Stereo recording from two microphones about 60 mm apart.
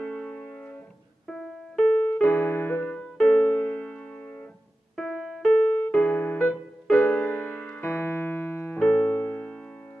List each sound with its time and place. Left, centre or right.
0.0 s music: centre
1.2 s keyboard: centre
2.2 s music: left
2.9 s keyboard: centre
5.1 s keyboard: centre
5.4 s music: centre
5.9 s electric piano: left
7.0 s piano: left
8.7 s piano: centre
9.1 s music: left